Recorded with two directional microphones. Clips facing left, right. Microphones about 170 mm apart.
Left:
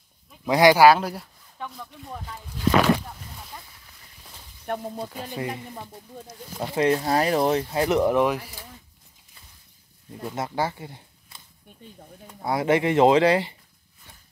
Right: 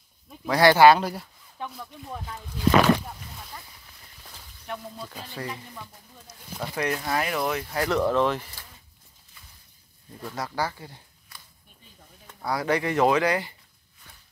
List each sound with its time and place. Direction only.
0.5 s speech: 15° left (ahead or behind)
0.7 s speech: 5° left (ahead or behind)
4.6 s speech: 50° left (ahead or behind)
5.1 s speech: 20° left (ahead or behind)
6.6 s speech: 25° left (ahead or behind)
10.2 s speech: 25° left (ahead or behind)